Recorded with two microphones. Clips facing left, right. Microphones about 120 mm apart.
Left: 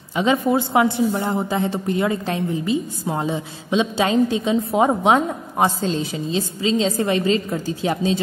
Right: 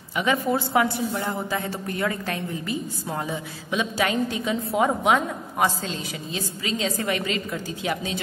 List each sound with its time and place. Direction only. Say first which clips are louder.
0.1 s a woman's voice: left 5 dB; 25° left (ahead or behind)